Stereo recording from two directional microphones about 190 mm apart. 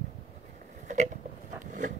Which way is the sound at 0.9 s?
40° right (ahead or behind).